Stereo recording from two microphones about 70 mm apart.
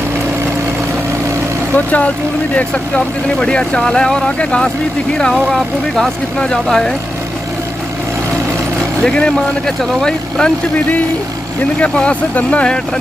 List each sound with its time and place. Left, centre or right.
1.9 s speech: left
6.5 s speech: centre
9.0 s speech: centre
11.8 s speech: centre